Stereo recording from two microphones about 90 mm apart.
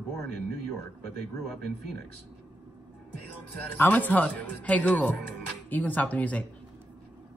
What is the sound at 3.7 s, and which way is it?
Speech, 20° left (ahead or behind).